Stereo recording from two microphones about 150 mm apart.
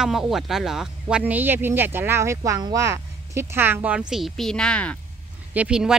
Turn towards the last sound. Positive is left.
turn(degrees=-5)  # may be behind; listen again after turning